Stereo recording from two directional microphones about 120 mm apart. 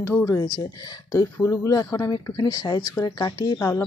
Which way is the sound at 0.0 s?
20° left (ahead or behind).